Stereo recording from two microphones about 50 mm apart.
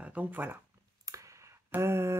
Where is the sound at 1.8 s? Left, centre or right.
Right.